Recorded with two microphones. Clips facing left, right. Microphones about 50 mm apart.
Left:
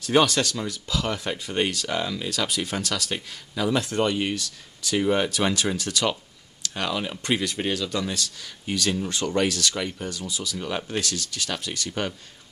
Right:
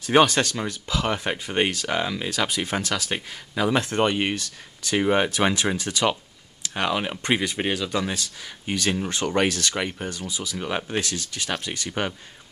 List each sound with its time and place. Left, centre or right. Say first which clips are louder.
0.0 s speech: right 2 dB; right
6.7 s speech: right 3 dB; right